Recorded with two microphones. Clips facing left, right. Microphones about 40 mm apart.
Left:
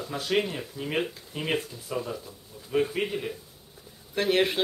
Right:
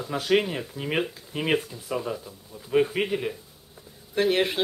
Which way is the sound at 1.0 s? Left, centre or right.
Centre.